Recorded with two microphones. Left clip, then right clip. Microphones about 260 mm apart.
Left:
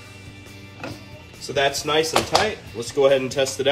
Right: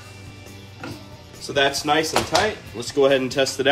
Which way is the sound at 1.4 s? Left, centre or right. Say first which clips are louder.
Right 1 dB; centre.